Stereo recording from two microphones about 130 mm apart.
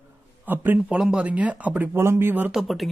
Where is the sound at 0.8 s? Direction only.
5° right (ahead or behind).